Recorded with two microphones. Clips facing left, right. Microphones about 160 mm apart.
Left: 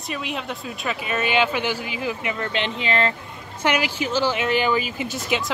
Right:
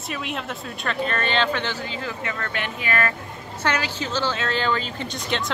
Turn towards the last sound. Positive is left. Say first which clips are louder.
# left 2 dB
turn(degrees=5)  # may be behind; listen again after turning